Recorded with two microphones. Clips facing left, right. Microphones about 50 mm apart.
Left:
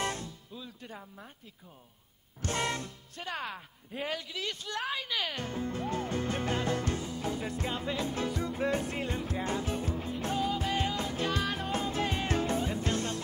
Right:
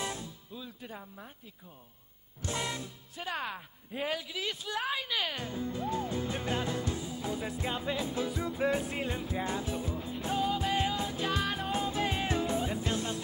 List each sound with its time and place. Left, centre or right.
0.2 s music: centre
2.4 s music: left
3.2 s speech: centre
5.5 s music: left
6.4 s music: centre
6.7 s music: left
7.2 s music: centre
7.6 s music: centre
9.7 s music: left
10.2 s music: centre
12.3 s music: left
12.5 s music: centre